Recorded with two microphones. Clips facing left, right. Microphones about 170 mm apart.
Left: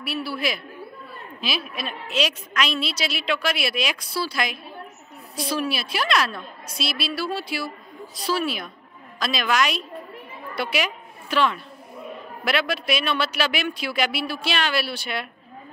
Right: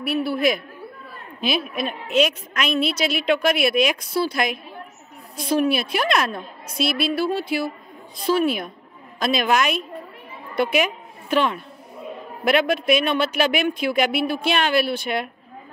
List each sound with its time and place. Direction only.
0.0 s a woman's voice: 55° right (ahead or behind)
1.4 s a woman's voice: 50° right (ahead or behind)